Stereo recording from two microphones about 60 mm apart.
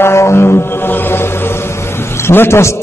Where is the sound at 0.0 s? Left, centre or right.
Left.